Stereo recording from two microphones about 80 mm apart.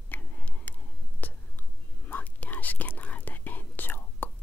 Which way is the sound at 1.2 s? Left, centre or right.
Left.